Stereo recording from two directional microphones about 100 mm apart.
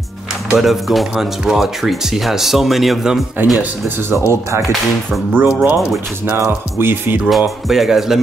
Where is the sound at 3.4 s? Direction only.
20° right (ahead or behind).